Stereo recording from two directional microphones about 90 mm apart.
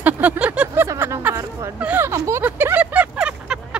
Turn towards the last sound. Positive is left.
turn(degrees=-10)  # may be behind; listen again after turning